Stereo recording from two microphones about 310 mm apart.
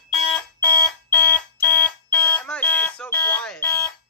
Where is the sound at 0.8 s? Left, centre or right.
Centre.